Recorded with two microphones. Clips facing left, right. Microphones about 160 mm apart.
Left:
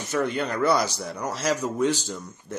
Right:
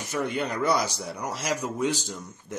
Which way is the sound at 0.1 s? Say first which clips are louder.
Left 3 dB; 5° right (ahead or behind).